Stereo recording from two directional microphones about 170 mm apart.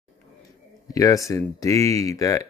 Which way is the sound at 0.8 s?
20° left (ahead or behind).